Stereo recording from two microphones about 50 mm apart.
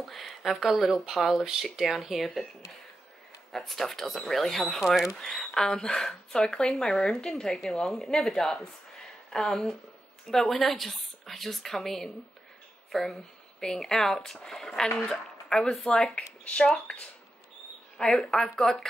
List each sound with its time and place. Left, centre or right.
0.0 s a woman's voice: centre
3.5 s a woman's voice: centre